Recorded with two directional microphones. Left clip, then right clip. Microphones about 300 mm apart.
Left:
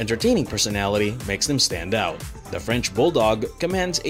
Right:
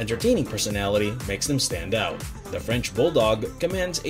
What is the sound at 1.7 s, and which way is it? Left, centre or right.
Speech, left.